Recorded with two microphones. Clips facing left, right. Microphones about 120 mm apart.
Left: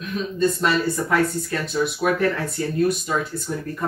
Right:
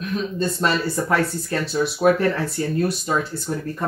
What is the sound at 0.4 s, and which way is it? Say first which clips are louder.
Speech: left 3 dB; 30° right (ahead or behind).